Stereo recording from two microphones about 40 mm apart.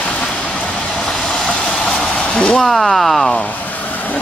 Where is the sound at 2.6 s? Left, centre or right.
Centre.